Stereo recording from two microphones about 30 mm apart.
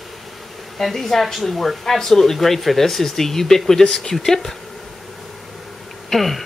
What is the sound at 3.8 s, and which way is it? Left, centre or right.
Speech, left.